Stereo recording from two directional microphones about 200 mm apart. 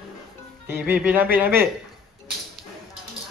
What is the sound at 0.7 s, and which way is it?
Speech, 10° right (ahead or behind).